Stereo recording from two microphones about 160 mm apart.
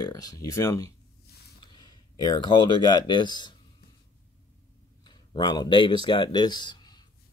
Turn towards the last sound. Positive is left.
turn(degrees=25)  # may be behind; listen again after turning